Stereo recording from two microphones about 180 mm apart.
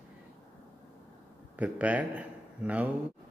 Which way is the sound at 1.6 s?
10° right (ahead or behind).